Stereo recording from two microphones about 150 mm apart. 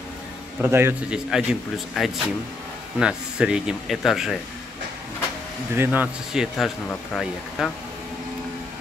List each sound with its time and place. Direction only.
0.6 s a man's voice: 15° right (ahead or behind)
1.3 s speech: 5° right (ahead or behind)
5.8 s speech: 10° right (ahead or behind)